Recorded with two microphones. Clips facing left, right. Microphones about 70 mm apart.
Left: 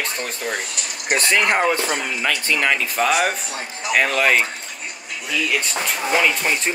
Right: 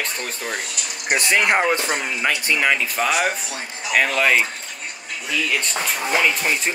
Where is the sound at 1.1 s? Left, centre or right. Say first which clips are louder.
Even; centre.